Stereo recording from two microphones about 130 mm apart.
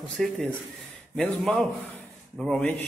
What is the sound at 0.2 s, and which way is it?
A man's voice, 5° left (ahead or behind).